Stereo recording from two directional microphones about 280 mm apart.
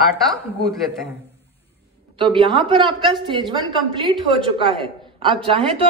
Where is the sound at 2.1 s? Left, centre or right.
Centre.